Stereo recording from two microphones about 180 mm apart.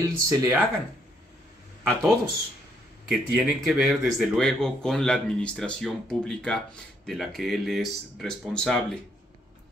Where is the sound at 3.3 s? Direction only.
5° right (ahead or behind).